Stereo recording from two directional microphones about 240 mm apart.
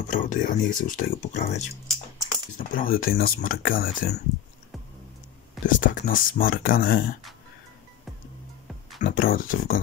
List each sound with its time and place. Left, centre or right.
0.1 s speech: left
5.7 s speech: left
9.0 s speech: left